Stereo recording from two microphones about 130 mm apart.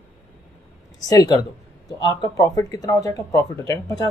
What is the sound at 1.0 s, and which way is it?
Speech, 30° left (ahead or behind).